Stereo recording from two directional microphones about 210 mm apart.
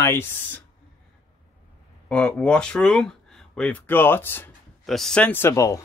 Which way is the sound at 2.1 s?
5° left (ahead or behind).